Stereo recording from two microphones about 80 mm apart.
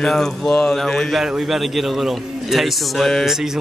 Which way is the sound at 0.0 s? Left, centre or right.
Centre.